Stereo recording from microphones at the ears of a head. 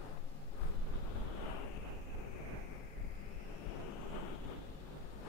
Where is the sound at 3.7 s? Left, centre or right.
Left.